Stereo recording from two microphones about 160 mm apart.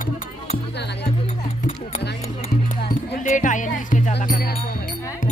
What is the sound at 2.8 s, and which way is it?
Music, 60° left (ahead or behind).